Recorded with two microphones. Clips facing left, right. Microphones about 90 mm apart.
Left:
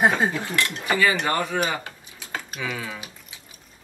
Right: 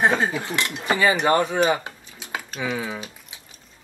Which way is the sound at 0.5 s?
20° right (ahead or behind).